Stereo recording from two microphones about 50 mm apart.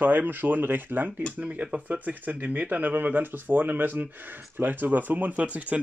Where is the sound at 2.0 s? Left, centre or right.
Right.